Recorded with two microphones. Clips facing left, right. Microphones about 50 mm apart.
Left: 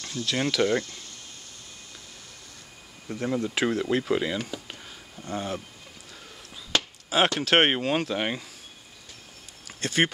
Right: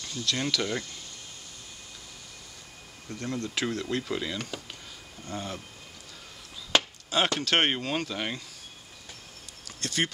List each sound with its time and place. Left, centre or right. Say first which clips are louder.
0.1 s speech: left 3 dB; centre
3.1 s speech: left 6 dB; centre
7.1 s speech: left 4 dB; centre
9.7 s speech: left 5 dB; left